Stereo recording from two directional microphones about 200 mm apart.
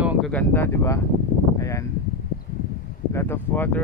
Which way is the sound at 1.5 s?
15° left (ahead or behind).